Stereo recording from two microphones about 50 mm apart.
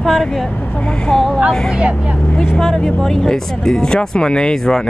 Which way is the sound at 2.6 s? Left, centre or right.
Centre.